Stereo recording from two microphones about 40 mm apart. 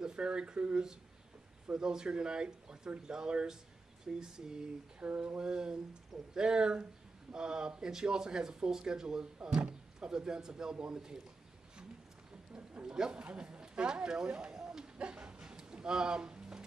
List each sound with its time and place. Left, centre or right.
0.0 s speech: right
1.7 s speech: centre
12.8 s a sound: centre